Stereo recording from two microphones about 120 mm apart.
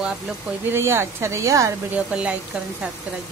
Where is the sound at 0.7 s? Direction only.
20° right (ahead or behind).